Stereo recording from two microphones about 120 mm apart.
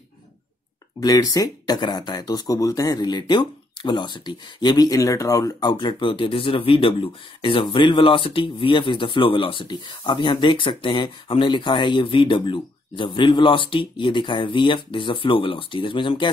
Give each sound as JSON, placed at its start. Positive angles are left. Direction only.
{"t": 1.0, "sound": "speech", "side_deg": 30}